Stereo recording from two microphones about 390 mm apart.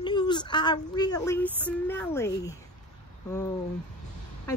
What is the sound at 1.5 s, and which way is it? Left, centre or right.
Speech, centre.